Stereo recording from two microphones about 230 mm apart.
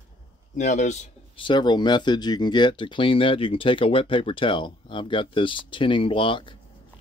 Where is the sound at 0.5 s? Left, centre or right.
Left.